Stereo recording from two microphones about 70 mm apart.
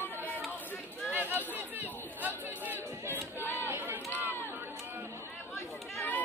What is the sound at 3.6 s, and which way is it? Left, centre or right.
Run, right.